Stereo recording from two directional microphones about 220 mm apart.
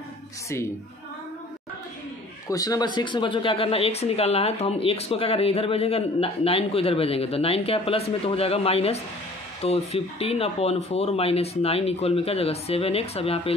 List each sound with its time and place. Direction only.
2.4 s speech: 15° left (ahead or behind)